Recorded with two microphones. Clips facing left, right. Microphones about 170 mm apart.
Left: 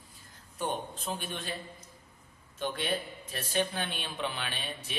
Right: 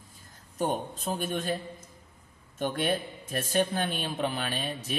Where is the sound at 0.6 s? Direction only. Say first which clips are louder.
Right 5 dB; 40° right (ahead or behind).